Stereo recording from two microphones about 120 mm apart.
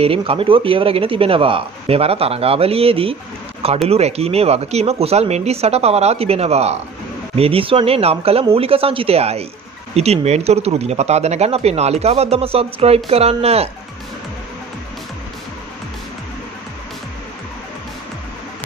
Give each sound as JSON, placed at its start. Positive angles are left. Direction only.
{"t": 0.0, "sound": "speech", "side_deg": -50}